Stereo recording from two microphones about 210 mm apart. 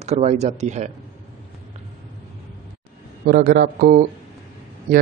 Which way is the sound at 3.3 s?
50° right (ahead or behind).